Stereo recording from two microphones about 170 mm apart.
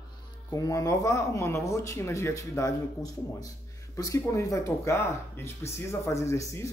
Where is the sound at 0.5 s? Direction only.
20° left (ahead or behind).